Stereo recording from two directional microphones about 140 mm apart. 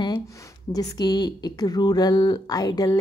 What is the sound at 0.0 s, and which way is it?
Speech, 25° left (ahead or behind).